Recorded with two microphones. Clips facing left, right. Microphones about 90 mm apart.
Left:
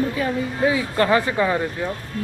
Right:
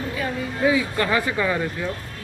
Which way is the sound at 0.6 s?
30° left (ahead or behind).